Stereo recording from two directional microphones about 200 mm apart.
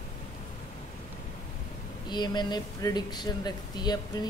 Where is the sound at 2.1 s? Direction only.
20° left (ahead or behind).